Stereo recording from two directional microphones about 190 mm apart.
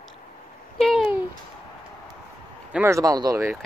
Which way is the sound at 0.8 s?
Centre (ahead or behind).